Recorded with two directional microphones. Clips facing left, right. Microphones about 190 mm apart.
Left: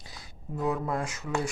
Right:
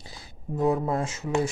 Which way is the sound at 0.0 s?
25° right (ahead or behind).